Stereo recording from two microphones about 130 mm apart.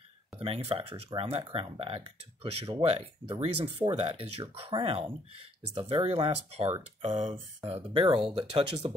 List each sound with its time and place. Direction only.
0.4 s speech: 50° right (ahead or behind)
7.0 s speech: 65° right (ahead or behind); by 8.7 s 45° right (ahead or behind)